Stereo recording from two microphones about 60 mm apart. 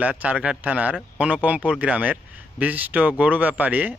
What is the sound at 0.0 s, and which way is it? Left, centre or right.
A man's voice, right.